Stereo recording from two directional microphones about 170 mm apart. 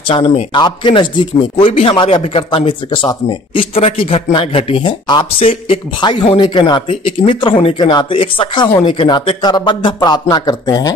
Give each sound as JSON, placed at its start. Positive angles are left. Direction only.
{"t": 0.1, "sound": "speech", "side_deg": 30}